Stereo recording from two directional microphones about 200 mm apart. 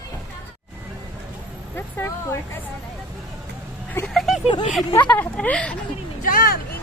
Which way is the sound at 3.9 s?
5° left (ahead or behind).